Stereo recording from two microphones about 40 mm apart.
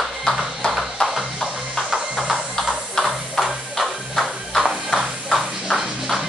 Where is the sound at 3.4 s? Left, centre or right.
Centre.